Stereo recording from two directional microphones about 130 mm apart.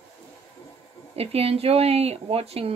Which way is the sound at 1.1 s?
50° right (ahead or behind).